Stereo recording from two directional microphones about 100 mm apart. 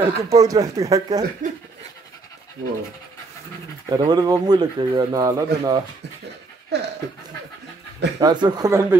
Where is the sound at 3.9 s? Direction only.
45° right (ahead or behind).